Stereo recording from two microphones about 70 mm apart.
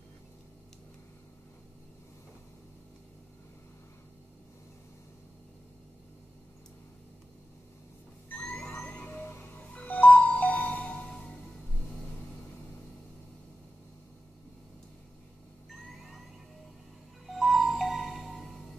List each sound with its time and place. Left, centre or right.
8.3 s music: centre
17.3 s music: centre